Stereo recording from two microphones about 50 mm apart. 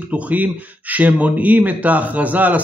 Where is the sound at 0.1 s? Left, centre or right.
Right.